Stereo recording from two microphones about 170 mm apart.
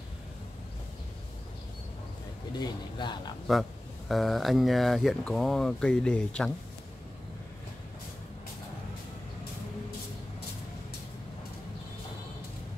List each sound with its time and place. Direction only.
2.5 s a man's voice: 25° left (ahead or behind)
3.5 s speech: centre (ahead or behind)